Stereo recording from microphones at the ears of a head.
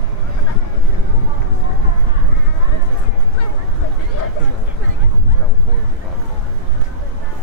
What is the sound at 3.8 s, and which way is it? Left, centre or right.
Vehicle, left.